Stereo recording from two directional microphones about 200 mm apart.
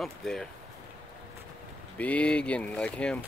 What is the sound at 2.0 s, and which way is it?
Speech, 5° left (ahead or behind).